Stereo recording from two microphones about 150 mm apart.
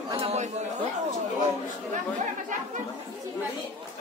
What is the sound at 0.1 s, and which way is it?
Chatter, 45° right (ahead or behind).